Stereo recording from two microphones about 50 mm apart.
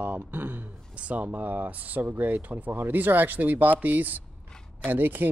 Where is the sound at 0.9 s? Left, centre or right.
Right.